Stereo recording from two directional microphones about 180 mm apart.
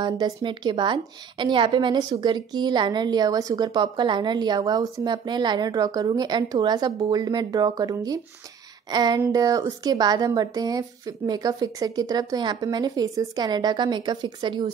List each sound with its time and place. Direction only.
0.0 s a woman's voice: 25° right (ahead or behind)